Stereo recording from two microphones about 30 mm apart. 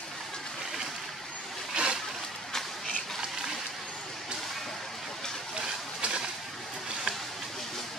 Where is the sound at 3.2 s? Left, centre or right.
Centre.